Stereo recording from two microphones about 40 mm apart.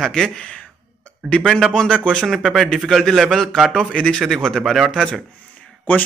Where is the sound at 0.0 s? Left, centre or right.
Centre.